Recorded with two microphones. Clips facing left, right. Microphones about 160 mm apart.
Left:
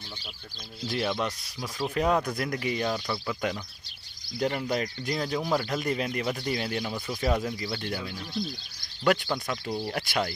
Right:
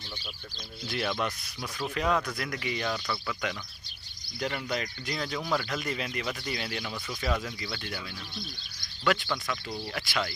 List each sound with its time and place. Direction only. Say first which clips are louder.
0.8 s speech: left 2 dB; 35° left (ahead or behind)
2.9 s speech: left 3 dB; 25° left (ahead or behind); by 10.3 s 45° left (ahead or behind)